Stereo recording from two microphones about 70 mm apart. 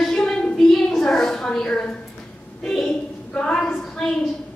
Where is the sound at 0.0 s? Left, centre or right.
Centre.